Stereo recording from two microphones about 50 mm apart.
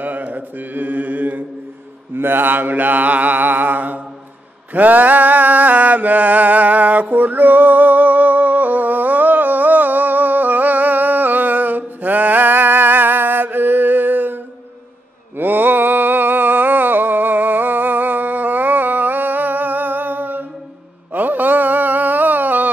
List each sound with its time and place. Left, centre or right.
0.0 s mantra: right
4.7 s a sound: right
21.1 s mantra: right